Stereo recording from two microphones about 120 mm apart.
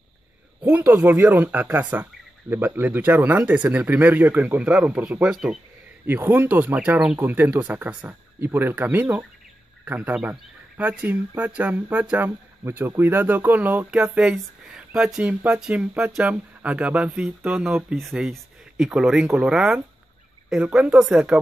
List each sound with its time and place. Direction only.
0.7 s speech: 15° right (ahead or behind)
6.0 s speech: 15° right (ahead or behind)